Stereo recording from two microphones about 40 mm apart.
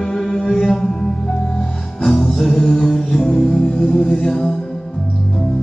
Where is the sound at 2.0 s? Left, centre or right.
Centre.